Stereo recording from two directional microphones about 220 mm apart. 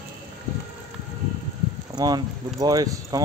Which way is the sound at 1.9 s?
15° right (ahead or behind).